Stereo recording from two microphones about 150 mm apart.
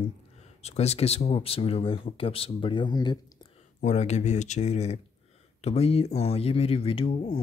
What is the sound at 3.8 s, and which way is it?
Speech, 50° left (ahead or behind).